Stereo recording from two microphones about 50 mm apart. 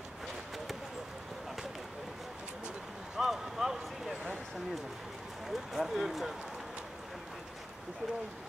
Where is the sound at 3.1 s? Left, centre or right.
Centre.